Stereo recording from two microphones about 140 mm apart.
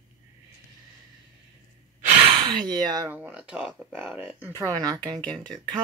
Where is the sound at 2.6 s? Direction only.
30° right (ahead or behind).